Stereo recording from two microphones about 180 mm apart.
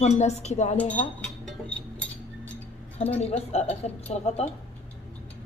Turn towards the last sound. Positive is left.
turn(degrees=35)  # may be behind; listen again after turning